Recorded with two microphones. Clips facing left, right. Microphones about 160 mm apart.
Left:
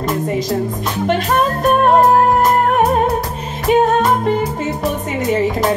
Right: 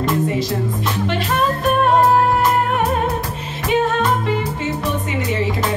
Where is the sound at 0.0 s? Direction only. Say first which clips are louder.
Even; 45° left (ahead or behind).